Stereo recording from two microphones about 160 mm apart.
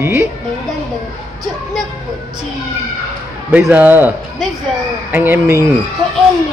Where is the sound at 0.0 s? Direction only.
15° right (ahead or behind).